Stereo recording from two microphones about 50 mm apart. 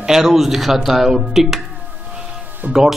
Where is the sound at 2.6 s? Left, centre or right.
Right.